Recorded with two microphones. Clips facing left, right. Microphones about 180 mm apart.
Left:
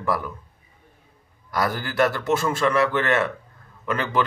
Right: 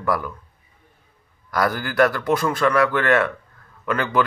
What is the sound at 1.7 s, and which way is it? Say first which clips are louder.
Speech: right 3 dB; 30° left (ahead or behind).